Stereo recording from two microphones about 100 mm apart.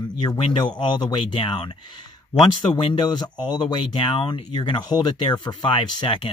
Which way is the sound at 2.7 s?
45° left (ahead or behind).